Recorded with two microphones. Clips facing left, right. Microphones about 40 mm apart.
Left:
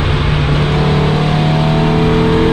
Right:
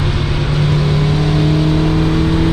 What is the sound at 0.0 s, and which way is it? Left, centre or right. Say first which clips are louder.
Vehicle: left 3 dB; left.